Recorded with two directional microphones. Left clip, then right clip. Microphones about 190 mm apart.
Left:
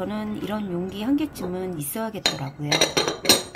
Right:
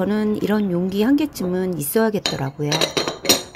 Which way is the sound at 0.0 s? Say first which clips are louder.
Right 8 dB; 30° right (ahead or behind).